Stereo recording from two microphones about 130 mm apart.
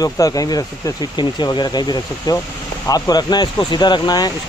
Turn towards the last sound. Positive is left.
turn(degrees=30)  # may be behind; listen again after turning